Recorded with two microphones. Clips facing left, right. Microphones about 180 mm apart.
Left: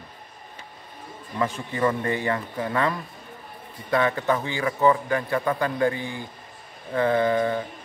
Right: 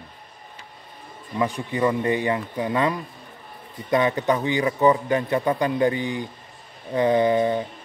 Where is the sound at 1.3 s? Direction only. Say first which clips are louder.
Right 3 dB; 15° right (ahead or behind).